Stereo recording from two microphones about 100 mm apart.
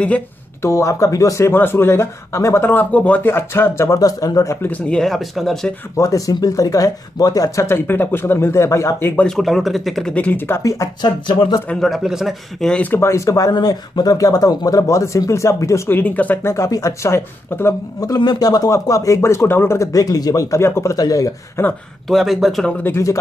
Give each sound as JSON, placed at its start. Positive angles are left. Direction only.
{"t": 0.6, "sound": "speech", "side_deg": 30}
{"t": 4.6, "sound": "speech", "side_deg": 15}
{"t": 5.9, "sound": "speech", "side_deg": 35}
{"t": 9.2, "sound": "speech", "side_deg": 0}
{"t": 10.1, "sound": "speech", "side_deg": 15}
{"t": 10.6, "sound": "speech", "side_deg": 30}
{"t": 11.0, "sound": "a sound", "side_deg": 50}
{"t": 11.7, "sound": "speech", "side_deg": 0}
{"t": 12.8, "sound": "speech", "side_deg": 25}
{"t": 16.5, "sound": "speech", "side_deg": 35}
{"t": 18.1, "sound": "speech", "side_deg": 45}
{"t": 22.0, "sound": "speech", "side_deg": 0}
{"t": 22.8, "sound": "speech", "side_deg": 25}